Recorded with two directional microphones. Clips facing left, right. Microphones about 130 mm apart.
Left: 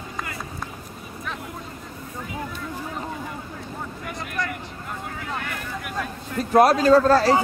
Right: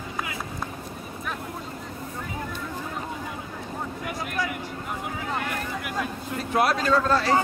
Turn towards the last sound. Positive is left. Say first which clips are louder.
# left 6 dB
turn(degrees=35)  # may be behind; listen again after turning